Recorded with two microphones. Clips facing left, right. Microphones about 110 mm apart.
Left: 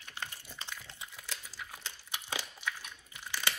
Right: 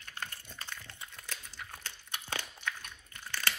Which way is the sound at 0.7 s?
15° left (ahead or behind).